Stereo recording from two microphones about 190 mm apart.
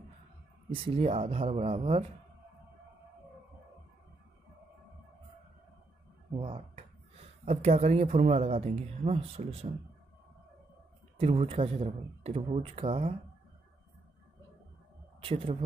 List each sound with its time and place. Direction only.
0.7 s speech: 30° right (ahead or behind)
6.3 s speech: 25° right (ahead or behind)
11.1 s speech: 35° right (ahead or behind)
15.1 s a man's voice: 30° right (ahead or behind)